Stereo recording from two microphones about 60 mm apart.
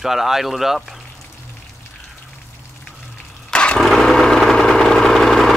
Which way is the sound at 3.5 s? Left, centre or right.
Centre.